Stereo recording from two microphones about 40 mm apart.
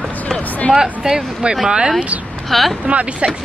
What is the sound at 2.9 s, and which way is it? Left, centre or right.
Speech, right.